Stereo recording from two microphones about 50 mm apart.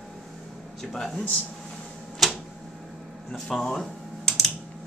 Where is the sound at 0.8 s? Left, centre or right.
Centre.